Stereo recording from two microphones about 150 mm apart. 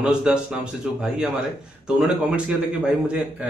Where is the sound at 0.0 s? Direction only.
5° right (ahead or behind).